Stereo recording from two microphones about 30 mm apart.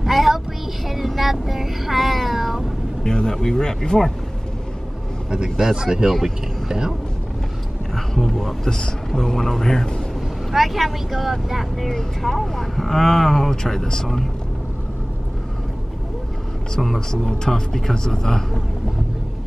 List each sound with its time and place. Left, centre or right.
0.0 s child singing: centre
1.0 s meow: centre
3.0 s speech: left
5.3 s speech: right
8.3 s speech: centre
10.5 s speech: centre
17.1 s speech: centre